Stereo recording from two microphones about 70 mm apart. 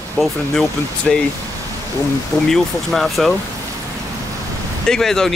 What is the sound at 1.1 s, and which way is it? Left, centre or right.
Speech, centre.